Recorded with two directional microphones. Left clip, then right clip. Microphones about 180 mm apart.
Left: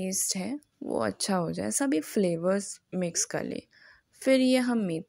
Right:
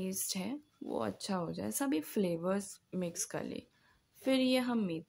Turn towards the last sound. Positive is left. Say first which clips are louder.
# left 7 dB
turn(degrees=25)  # may be behind; listen again after turning